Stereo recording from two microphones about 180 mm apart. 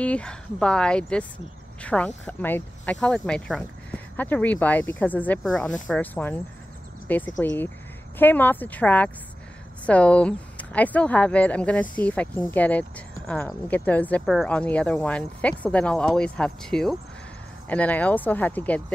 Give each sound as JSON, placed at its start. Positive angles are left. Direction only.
{"t": 0.0, "sound": "speech", "side_deg": 5}